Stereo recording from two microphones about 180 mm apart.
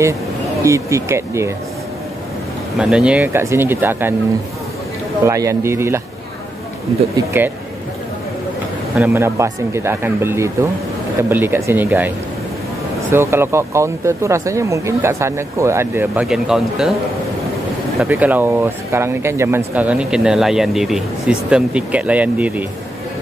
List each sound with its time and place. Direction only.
0.7 s speech: 15° right (ahead or behind)
2.8 s speech: 5° right (ahead or behind)
5.2 s speech: 15° right (ahead or behind)
7.2 s speech: 10° right (ahead or behind)
8.9 s speech: 10° right (ahead or behind)
13.1 s speech: 15° right (ahead or behind)
18.0 s speech: 10° right (ahead or behind)